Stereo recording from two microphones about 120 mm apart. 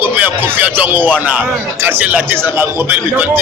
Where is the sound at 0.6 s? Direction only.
15° right (ahead or behind).